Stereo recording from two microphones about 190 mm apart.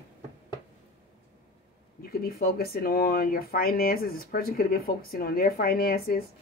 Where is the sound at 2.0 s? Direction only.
50° left (ahead or behind).